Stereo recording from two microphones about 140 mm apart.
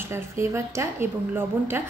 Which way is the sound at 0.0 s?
20° right (ahead or behind).